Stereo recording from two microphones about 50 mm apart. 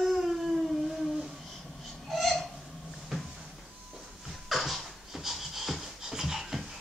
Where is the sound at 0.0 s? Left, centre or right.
Centre.